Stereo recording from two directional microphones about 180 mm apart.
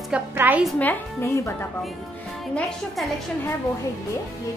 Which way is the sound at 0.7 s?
10° left (ahead or behind).